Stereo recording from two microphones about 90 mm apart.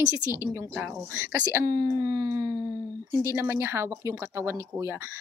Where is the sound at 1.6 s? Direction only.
40° right (ahead or behind).